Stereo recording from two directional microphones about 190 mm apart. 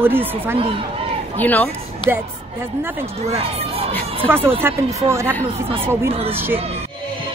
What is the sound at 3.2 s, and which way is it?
Speech, 30° right (ahead or behind).